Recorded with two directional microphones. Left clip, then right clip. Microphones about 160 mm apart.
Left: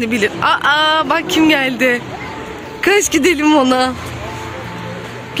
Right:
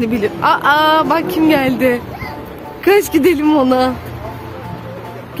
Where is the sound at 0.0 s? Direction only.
Centre (ahead or behind).